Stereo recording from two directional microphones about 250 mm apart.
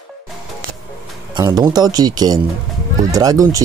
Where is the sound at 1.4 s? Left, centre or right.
Centre.